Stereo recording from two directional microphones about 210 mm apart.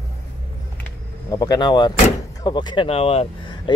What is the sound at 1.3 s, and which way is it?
Speech, 20° left (ahead or behind).